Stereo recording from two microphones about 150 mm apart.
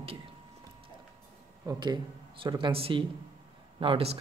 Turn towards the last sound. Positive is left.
turn(degrees=-40)  # may be behind; listen again after turning